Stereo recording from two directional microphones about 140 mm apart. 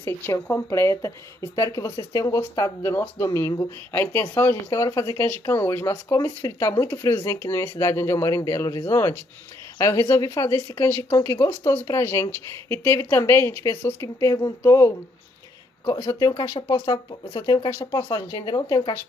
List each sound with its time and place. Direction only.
0.0 s speech: 20° left (ahead or behind)
16.1 s speech: 25° left (ahead or behind)